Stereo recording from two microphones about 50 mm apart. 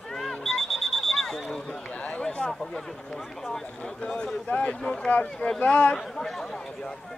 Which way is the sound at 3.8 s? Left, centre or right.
Centre.